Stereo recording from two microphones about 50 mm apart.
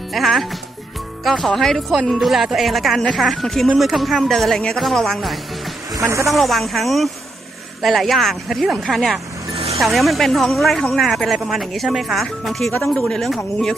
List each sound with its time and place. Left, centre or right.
0.1 s a woman's voice: centre
2.1 s a woman's voice: centre
5.9 s speech: right
6.3 s a woman's voice: centre
12.8 s speech: centre
13.2 s speech: centre